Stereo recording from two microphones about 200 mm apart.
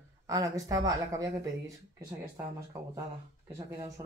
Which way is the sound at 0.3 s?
15° right (ahead or behind).